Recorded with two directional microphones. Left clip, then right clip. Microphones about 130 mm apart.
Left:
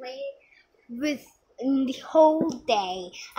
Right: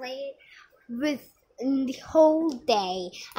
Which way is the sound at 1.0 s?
15° right (ahead or behind).